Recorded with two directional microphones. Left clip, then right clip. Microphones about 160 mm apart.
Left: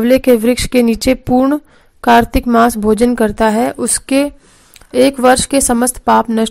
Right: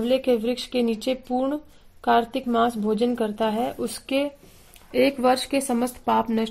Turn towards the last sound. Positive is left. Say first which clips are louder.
# left 11 dB
turn(degrees=30)  # may be behind; listen again after turning